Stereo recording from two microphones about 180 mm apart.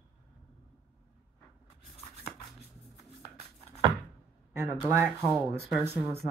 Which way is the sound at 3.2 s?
35° left (ahead or behind).